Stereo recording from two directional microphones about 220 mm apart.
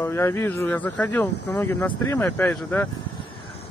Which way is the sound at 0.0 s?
10° left (ahead or behind).